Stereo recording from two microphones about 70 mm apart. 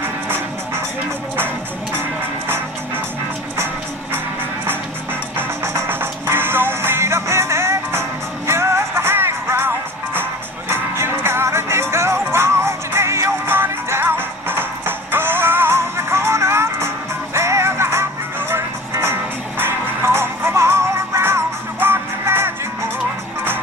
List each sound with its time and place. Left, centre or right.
5.6 s music: right